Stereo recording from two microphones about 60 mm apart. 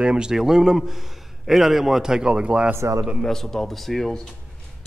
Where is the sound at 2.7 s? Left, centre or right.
Right.